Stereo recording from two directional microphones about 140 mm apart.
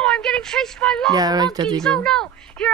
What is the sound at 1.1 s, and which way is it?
Speech, 30° right (ahead or behind).